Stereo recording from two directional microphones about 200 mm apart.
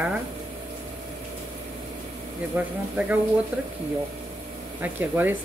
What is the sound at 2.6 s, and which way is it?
Speech, 10° right (ahead or behind).